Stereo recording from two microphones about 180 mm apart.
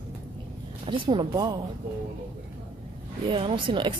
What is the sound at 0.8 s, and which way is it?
Speech, 30° right (ahead or behind).